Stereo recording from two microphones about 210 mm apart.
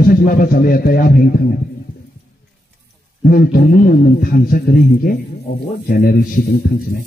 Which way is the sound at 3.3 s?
45° left (ahead or behind).